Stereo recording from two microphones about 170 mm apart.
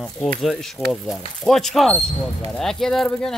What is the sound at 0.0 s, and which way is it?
Speech, 5° left (ahead or behind).